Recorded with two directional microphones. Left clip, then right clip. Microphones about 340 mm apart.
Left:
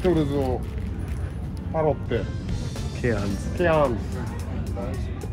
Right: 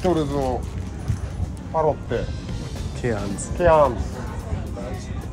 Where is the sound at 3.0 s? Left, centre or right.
Centre.